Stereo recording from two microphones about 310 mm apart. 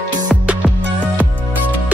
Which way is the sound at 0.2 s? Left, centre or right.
Centre.